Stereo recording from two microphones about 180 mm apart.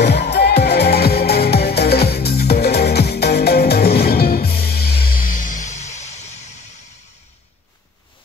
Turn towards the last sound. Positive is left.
turn(degrees=40)  # may be behind; listen again after turning